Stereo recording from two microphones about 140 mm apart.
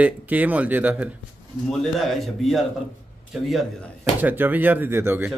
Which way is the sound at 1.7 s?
Centre (ahead or behind).